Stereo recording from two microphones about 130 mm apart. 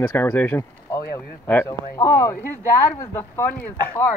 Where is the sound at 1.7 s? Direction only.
30° left (ahead or behind).